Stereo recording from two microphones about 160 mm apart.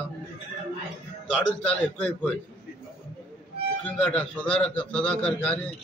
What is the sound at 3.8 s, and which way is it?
Speech, 10° left (ahead or behind).